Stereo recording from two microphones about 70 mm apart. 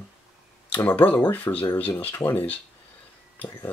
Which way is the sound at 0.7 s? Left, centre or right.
Left.